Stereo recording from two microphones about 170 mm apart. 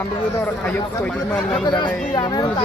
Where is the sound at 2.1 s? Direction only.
25° left (ahead or behind).